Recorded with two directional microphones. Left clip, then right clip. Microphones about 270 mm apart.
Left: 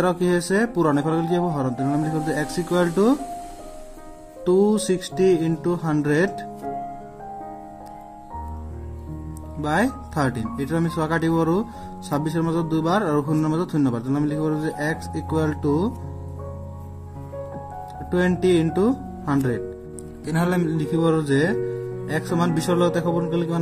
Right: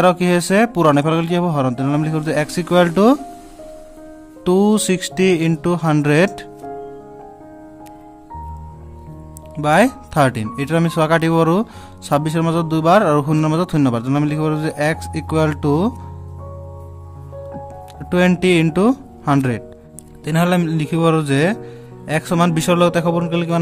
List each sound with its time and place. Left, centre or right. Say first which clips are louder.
0.0 s speech: right 7 dB; right
4.5 s speech: right 3 dB; right
9.6 s speech: right 9 dB; right
18.1 s speech: right 5 dB; right